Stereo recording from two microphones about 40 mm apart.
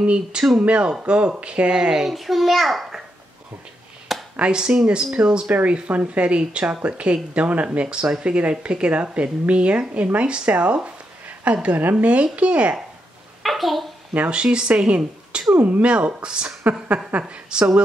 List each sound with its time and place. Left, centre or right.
0.0 s speech: right
2.0 s a child's voice: centre
4.4 s speech: right
5.7 s a woman's voice: right
11.2 s a sound: right
11.7 s a woman's voice: right
13.4 s a sound: centre
14.3 s a woman's voice: right
15.5 s speech: right